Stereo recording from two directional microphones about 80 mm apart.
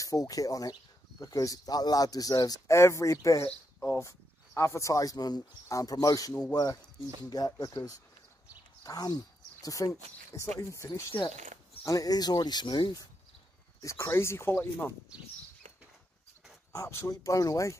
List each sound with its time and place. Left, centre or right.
0.0 s speech: left
2.7 s speech: left
13.7 s speech: left
16.7 s speech: left